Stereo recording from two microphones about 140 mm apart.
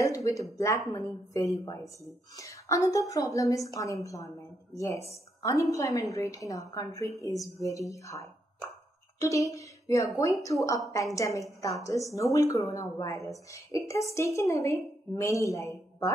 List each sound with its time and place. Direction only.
0.0 s a woman's voice: 25° left (ahead or behind)